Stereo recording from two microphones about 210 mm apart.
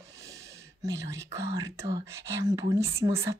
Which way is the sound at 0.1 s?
15° right (ahead or behind).